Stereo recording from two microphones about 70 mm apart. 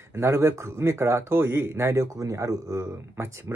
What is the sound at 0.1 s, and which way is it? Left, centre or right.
Speech, right.